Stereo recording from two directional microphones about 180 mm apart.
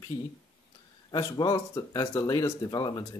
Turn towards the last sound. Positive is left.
turn(degrees=20)  # may be behind; listen again after turning